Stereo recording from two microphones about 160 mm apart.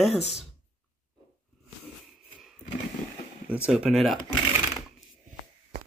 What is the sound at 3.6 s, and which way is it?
Speech, 5° right (ahead or behind).